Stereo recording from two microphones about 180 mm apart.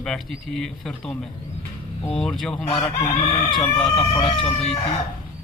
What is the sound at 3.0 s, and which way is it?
Chicken, 35° left (ahead or behind).